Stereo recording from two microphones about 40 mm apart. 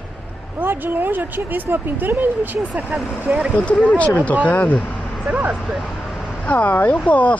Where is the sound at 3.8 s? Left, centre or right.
Left.